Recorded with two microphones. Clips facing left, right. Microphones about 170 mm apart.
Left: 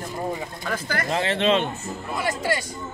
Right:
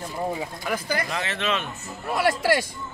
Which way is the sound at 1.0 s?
30° left (ahead or behind).